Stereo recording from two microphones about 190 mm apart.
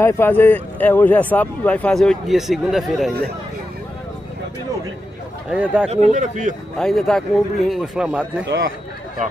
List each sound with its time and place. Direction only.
0.0 s speech: 10° left (ahead or behind)
5.5 s speech: 5° right (ahead or behind)
5.9 s speech: 40° right (ahead or behind)
6.8 s speech: centre (ahead or behind)